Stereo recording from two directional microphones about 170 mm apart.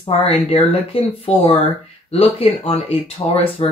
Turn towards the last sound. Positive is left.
turn(degrees=35)  # may be behind; listen again after turning